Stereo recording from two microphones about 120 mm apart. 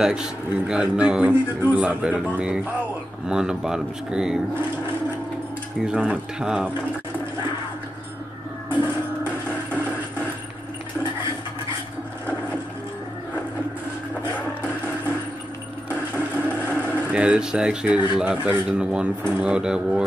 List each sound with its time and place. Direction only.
0.0 s speech: 5° right (ahead or behind)
5.8 s speech: 10° right (ahead or behind)
8.7 s music: 15° right (ahead or behind)
15.9 s a sound: 15° right (ahead or behind)
18.2 s speech: 15° right (ahead or behind)